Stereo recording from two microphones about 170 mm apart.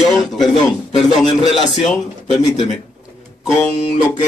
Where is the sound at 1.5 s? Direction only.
Centre (ahead or behind).